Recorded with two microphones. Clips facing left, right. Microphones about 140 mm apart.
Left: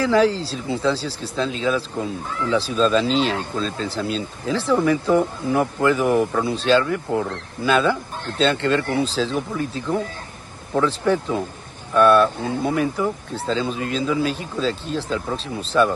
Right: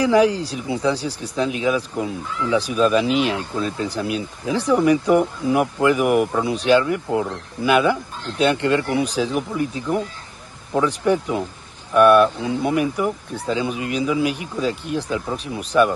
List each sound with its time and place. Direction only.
0.0 s speech: 15° right (ahead or behind)